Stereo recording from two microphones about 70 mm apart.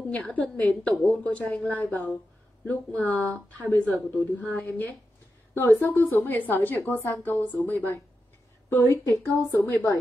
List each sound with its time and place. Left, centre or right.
0.1 s a woman's voice: centre; by 9.9 s left